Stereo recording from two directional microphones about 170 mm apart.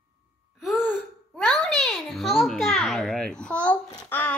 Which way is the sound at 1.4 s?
5° left (ahead or behind).